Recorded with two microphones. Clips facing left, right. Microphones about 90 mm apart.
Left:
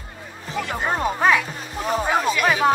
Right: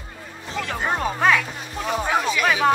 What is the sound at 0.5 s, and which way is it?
Speech, 5° left (ahead or behind).